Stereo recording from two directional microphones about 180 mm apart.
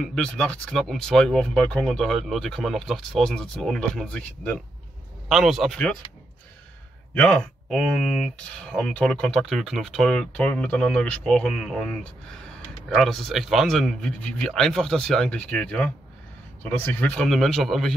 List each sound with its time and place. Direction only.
0.0 s speech: 5° left (ahead or behind)
7.2 s speech: 5° left (ahead or behind)